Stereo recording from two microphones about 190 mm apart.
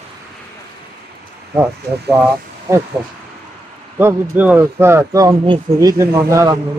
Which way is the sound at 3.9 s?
10° right (ahead or behind).